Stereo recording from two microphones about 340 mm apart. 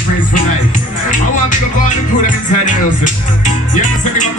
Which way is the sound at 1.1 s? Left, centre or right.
Left.